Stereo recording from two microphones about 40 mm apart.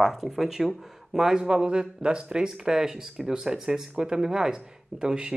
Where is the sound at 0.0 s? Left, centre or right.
Centre.